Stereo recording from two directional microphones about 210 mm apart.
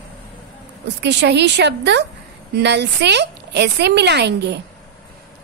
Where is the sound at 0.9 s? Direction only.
55° right (ahead or behind).